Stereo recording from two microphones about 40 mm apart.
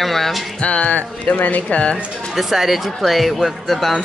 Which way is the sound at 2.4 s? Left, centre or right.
Centre.